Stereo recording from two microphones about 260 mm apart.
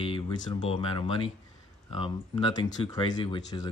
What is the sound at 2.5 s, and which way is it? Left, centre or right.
Speech, centre.